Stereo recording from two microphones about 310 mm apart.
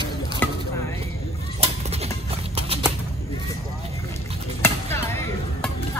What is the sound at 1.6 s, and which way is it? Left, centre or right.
Clip-clop, centre.